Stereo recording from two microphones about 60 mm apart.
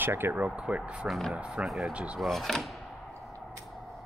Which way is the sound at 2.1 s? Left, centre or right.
Centre.